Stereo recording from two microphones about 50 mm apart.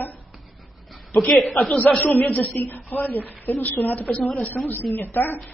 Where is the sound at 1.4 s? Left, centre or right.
Centre.